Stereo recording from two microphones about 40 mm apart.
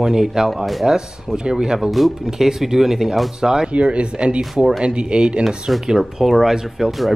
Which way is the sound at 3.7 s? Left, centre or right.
Right.